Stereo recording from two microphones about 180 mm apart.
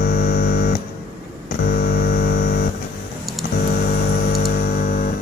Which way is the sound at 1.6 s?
55° left (ahead or behind).